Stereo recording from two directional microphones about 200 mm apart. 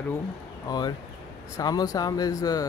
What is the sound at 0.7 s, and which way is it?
Speech, 20° left (ahead or behind).